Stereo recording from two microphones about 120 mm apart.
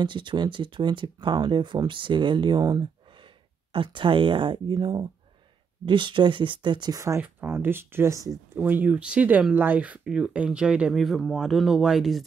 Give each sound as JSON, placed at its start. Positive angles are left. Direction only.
{"t": 0.0, "sound": "speech", "side_deg": -40}
{"t": 7.2, "sound": "speech", "side_deg": -15}
{"t": 8.5, "sound": "speech", "side_deg": -15}